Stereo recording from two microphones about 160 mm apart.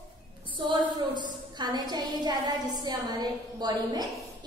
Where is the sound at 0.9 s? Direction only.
25° right (ahead or behind).